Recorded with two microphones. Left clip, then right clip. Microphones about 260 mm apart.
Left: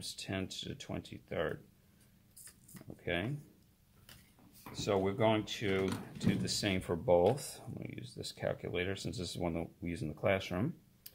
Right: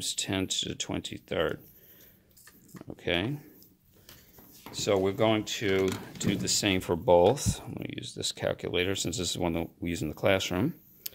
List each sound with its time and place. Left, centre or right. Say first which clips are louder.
0.0 s speech: right 10 dB; right
2.8 s speech: right 8 dB; right
4.7 s speech: right 7 dB; right